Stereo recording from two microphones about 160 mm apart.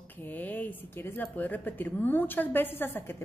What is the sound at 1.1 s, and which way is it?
A woman's voice, 10° left (ahead or behind).